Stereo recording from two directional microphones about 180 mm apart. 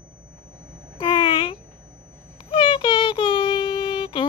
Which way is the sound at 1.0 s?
30° left (ahead or behind).